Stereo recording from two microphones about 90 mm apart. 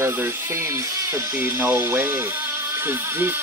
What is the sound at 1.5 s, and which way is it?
Speech, 20° right (ahead or behind).